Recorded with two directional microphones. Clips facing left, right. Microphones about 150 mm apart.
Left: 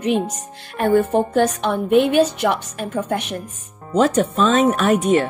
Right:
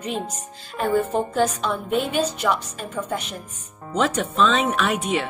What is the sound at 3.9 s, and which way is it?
Speech, 40° left (ahead or behind).